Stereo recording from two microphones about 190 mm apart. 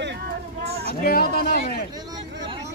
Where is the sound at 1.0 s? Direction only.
50° left (ahead or behind).